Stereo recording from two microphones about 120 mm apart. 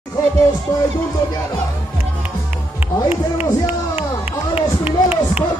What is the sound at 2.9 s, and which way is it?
Speech, 35° left (ahead or behind).